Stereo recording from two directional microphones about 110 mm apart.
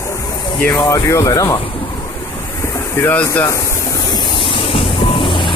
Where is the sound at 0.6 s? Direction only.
25° left (ahead or behind).